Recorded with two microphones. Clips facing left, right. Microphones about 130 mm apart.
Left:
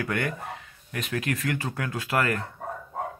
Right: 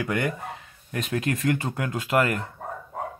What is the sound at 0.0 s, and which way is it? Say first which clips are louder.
Speech: right 2 dB; 15° right (ahead or behind).